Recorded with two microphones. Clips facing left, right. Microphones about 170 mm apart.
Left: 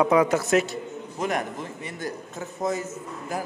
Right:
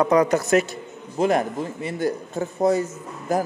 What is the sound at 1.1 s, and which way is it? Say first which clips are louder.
Speech: right 8 dB; 30° right (ahead or behind).